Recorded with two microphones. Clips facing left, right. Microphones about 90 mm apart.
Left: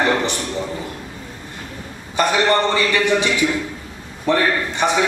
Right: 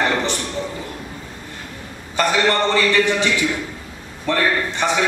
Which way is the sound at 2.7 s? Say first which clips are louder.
Even; 15° left (ahead or behind).